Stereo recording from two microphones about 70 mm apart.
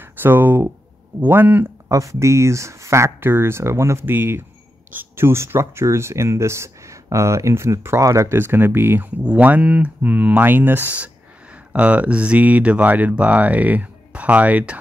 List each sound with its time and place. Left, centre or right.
0.0 s speech: right
1.9 s speech: right
8.4 s speech: right